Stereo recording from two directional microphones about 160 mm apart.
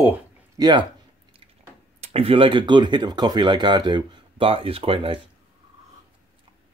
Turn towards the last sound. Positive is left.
turn(degrees=-35)  # may be behind; listen again after turning